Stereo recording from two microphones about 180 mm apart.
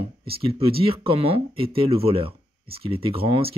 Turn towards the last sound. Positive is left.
turn(degrees=-30)  # may be behind; listen again after turning